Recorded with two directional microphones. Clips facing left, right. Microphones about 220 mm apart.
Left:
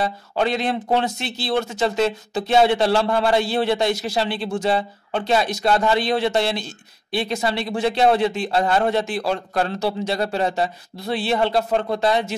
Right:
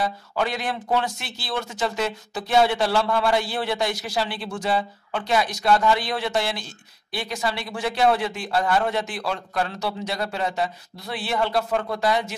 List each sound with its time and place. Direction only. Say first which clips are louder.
0.0 s speech: left 3 dB; 25° left (ahead or behind)